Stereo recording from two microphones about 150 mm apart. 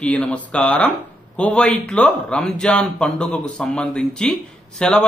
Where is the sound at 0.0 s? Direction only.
10° left (ahead or behind).